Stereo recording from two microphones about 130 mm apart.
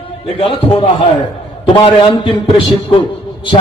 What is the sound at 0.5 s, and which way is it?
A man's voice, 40° left (ahead or behind).